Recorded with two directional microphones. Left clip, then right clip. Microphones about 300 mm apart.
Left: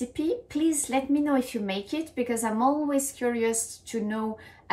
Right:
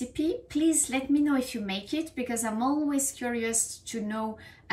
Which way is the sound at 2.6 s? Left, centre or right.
Centre.